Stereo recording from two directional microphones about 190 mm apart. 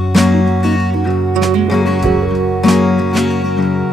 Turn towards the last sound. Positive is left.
turn(degrees=0)  # may be behind; listen again after turning